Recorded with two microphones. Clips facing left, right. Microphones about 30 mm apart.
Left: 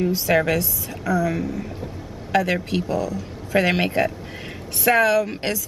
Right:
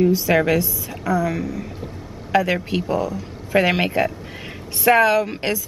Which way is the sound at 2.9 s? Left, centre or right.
Right.